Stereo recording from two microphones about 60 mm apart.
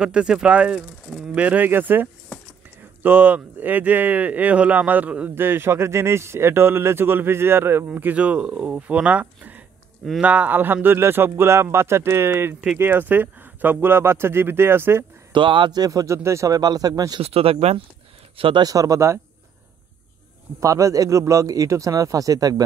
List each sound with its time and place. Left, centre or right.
0.0 s speech: centre
5.3 s speech: right
15.7 s speech: right
16.1 s speech: right
18.6 s speech: right
20.6 s speech: right